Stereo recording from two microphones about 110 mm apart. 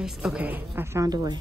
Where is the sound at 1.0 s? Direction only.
35° right (ahead or behind).